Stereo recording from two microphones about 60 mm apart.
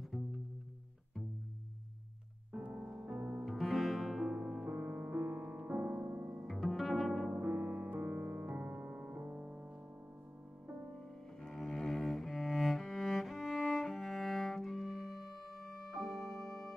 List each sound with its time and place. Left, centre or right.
2.5 s music: right
3.4 s music: centre
4.6 s music: right
6.4 s music: centre
7.2 s music: right
11.4 s cello: centre